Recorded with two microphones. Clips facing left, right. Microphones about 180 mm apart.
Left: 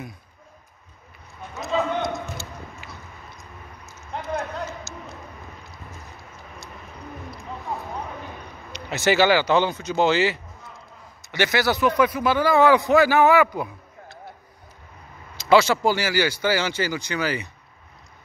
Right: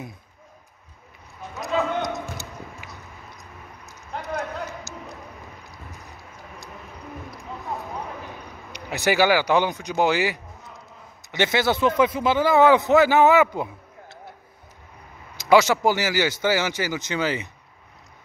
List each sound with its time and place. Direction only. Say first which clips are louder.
1.6 s clip-clop: even; 20° right (ahead or behind)
2.8 s a sound: left 1 dB; 15° right (ahead or behind)
8.7 s speech: left 1 dB; 15° right (ahead or behind)
15.3 s speech: even; 15° right (ahead or behind)